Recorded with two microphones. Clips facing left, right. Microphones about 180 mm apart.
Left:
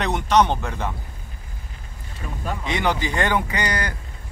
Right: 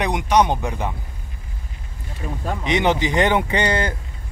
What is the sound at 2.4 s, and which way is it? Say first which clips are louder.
Speech: right 4 dB; 20° right (ahead or behind).